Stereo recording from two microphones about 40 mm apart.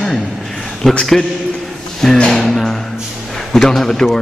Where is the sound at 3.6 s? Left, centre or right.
Centre.